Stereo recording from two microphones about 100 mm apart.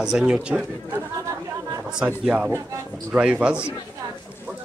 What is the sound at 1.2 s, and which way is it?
Chatter, 35° right (ahead or behind).